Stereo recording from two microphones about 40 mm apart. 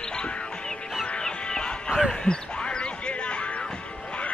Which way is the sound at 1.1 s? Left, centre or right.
Left.